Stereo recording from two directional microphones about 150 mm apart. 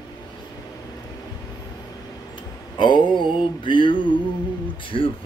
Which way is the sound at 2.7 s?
30° left (ahead or behind).